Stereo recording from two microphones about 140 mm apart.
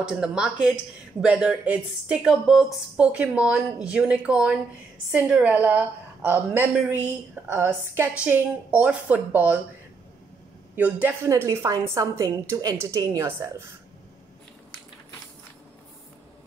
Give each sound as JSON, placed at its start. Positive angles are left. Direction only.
{"t": 0.1, "sound": "a woman's voice", "side_deg": -5}
{"t": 10.8, "sound": "a woman's voice", "side_deg": -10}